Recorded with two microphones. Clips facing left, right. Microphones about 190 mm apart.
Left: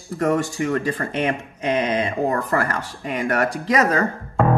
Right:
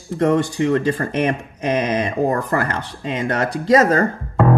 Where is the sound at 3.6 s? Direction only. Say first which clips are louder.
Right 7 dB; 40° right (ahead or behind).